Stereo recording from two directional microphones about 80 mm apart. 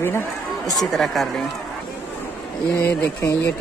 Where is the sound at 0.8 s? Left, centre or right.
Centre.